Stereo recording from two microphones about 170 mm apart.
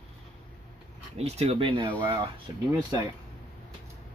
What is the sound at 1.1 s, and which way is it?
Speech, 40° right (ahead or behind).